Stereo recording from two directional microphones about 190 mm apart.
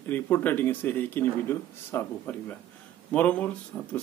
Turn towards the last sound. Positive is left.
turn(degrees=5)  # may be behind; listen again after turning